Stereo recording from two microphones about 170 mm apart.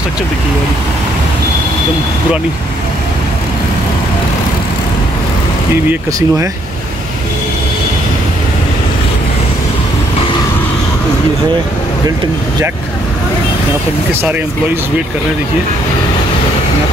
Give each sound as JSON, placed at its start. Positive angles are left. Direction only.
{"t": 5.9, "sound": "speech", "side_deg": -15}